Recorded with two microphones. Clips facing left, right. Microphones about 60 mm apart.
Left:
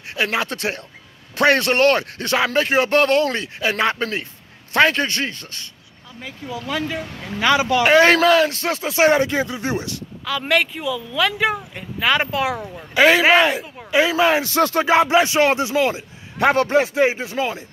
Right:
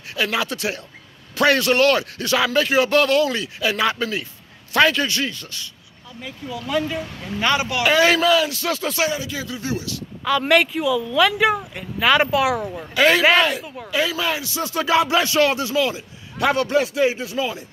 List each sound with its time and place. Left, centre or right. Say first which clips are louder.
0.1 s a man's voice: left 1 dB; left
7.8 s a man's voice: left 3 dB; left
9.0 s speech: left 12 dB; left
9.4 s a man's voice: left 4 dB; left
10.2 s speech: right 3 dB; centre
12.9 s a man's voice: left 2 dB; centre; by 14.8 s left
14.8 s a man's voice: left 1 dB; left